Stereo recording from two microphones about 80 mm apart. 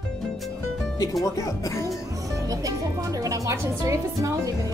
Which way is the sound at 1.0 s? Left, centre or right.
Left.